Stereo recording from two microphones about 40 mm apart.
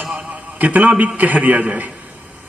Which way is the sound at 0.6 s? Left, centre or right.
Right.